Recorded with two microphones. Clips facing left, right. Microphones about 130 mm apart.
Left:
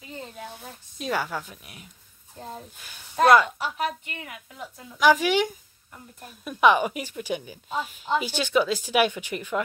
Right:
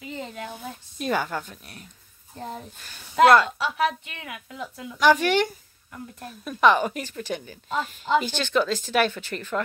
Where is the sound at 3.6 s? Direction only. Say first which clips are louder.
Right 4 dB; 90° right.